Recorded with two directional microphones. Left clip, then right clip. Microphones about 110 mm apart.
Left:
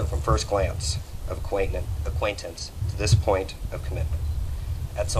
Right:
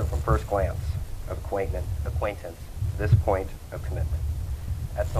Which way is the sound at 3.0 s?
35° left (ahead or behind).